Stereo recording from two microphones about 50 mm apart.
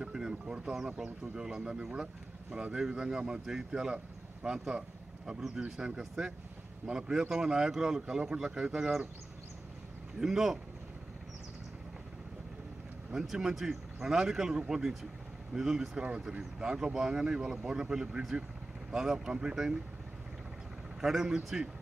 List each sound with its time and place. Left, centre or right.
0.0 s speech: centre
5.6 s speech: centre
10.1 s speech: centre
13.1 s speech: centre
21.0 s speech: centre